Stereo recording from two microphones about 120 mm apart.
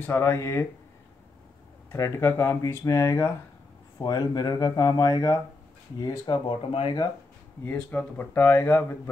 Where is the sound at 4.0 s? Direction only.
35° left (ahead or behind).